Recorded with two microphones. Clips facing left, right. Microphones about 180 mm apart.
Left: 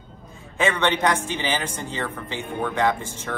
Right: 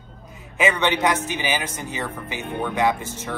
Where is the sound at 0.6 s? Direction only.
10° right (ahead or behind).